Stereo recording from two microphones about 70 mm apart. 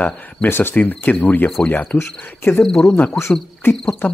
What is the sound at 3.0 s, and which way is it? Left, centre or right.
Cricket, left.